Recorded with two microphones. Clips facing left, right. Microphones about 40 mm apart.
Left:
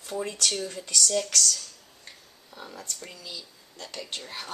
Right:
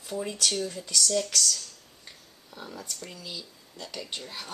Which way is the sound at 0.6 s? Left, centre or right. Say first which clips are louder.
Even; centre.